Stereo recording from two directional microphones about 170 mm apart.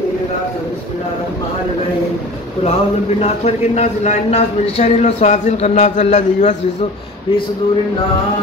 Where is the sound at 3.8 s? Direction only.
40° left (ahead or behind).